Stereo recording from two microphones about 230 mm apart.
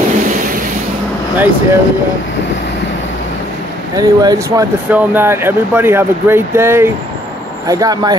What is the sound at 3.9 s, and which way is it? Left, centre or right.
Speech, centre.